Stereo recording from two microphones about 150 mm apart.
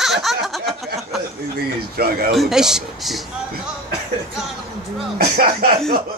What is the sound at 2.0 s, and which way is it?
Speech, 90° right.